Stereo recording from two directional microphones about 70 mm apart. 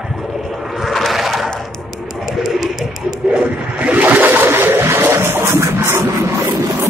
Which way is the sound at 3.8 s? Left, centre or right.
Right.